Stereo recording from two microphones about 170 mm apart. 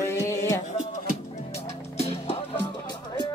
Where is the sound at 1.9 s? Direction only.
35° left (ahead or behind).